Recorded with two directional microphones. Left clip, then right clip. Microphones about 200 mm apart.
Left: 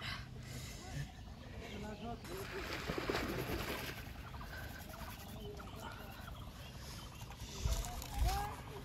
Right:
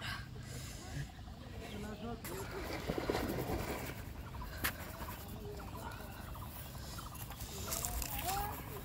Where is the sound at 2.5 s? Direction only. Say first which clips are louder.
Right 1 dB; 30° left (ahead or behind).